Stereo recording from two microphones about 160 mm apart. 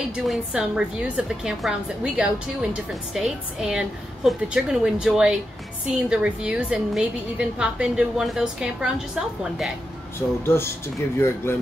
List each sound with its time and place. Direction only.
0.3 s a woman's voice: 5° right (ahead or behind)
10.4 s speech: 15° left (ahead or behind)